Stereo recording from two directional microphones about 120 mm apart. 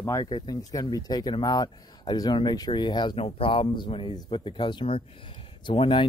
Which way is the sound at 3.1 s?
50° left (ahead or behind).